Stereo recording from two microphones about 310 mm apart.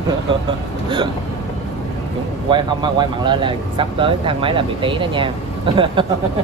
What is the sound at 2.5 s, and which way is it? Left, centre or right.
Speech, centre.